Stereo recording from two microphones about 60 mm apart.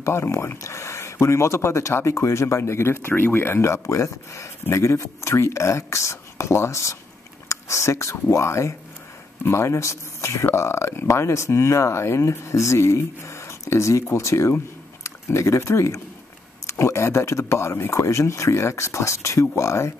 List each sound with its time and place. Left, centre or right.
0.0 s speech: left